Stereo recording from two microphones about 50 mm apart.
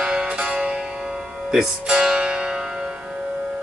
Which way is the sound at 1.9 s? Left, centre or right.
Centre.